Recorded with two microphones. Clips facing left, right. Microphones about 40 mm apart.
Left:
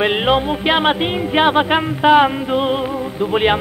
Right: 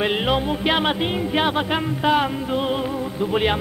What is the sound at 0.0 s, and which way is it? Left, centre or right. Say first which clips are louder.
Music: left 5 dB; left.